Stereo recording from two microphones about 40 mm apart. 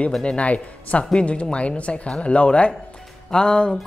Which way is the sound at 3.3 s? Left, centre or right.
Centre.